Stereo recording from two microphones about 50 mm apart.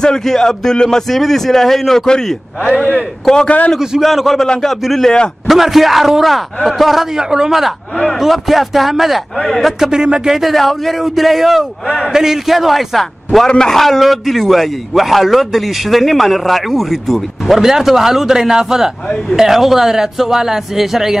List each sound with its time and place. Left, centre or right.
0.0 s a man's voice: centre
3.4 s a man's voice: left
4.0 s a man's voice: centre
7.2 s a man's voice: centre
8.2 s a man's voice: centre
9.8 s a man's voice: centre
10.5 s a man's voice: centre